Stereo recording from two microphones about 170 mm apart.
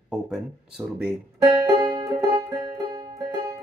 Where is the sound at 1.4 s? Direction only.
25° right (ahead or behind).